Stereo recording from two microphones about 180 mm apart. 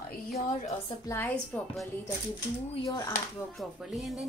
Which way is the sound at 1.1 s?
10° left (ahead or behind).